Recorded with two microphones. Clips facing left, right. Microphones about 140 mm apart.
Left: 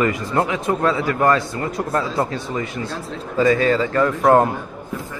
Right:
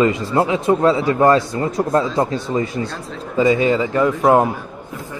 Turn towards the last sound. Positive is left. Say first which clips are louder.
# even
turn(degrees=0)  # may be behind; listen again after turning